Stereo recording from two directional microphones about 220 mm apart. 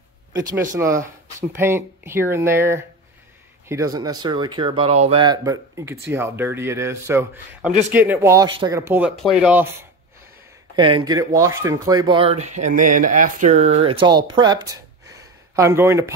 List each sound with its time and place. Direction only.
0.3 s speech: 15° right (ahead or behind)
9.1 s speech: centre (ahead or behind)
10.8 s speech: 20° right (ahead or behind)